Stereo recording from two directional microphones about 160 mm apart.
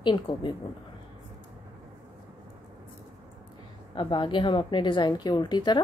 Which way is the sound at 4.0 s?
30° left (ahead or behind).